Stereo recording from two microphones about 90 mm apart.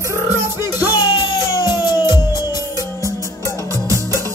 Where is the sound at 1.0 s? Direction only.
50° left (ahead or behind).